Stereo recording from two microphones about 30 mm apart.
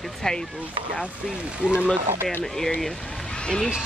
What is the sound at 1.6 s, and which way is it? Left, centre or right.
Speech, right.